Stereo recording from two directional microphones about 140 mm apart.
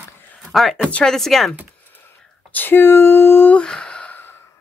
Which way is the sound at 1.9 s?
15° left (ahead or behind).